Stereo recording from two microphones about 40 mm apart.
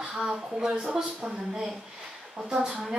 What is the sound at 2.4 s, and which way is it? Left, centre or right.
Speech, centre.